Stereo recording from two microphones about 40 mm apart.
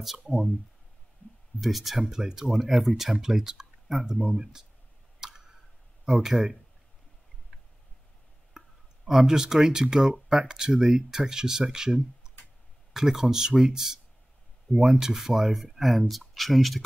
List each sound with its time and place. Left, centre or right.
0.3 s speech: centre
1.6 s speech: centre
5.2 s a sound: centre
6.0 s speech: centre
8.5 s speech: centre